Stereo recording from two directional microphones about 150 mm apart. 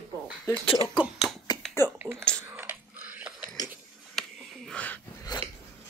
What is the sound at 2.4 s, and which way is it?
Biting, 15° right (ahead or behind).